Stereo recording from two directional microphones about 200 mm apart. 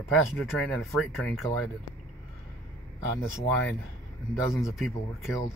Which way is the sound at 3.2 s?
10° left (ahead or behind).